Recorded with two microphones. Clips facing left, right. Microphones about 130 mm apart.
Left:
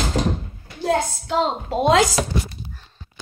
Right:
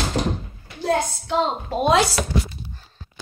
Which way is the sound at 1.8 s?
90° left.